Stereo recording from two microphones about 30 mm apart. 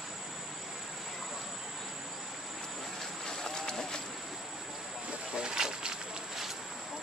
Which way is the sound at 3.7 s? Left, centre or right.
Centre.